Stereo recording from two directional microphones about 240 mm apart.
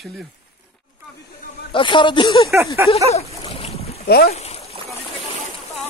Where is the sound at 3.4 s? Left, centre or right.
Left.